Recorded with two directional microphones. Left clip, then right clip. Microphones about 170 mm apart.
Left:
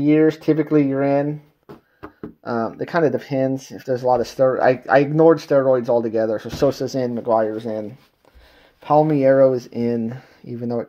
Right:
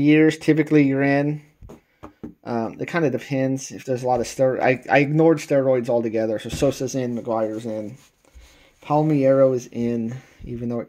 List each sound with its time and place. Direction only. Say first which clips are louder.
0.0 s speech: even; 25° right (ahead or behind)
2.0 s a sound: left 3 dB; 35° left (ahead or behind)
2.6 s speech: left 4 dB; 10° right (ahead or behind)
8.8 s speech: left 4 dB; centre (ahead or behind)